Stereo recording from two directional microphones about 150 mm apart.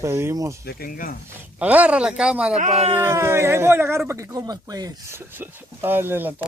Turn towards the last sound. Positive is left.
turn(degrees=-15)  # may be behind; listen again after turning